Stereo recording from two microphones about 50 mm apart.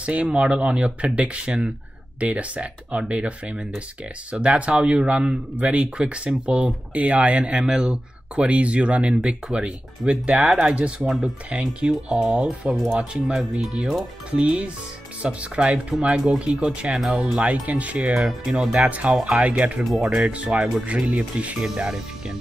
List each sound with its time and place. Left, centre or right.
0.0 s speech: right
11.9 s speech: centre
14.3 s speech: centre
16.5 s speech: centre
17.4 s speech: right
18.1 s speech: centre
19.4 s speech: right
19.8 s speech: centre
20.2 s speech: right
21.6 s speech: centre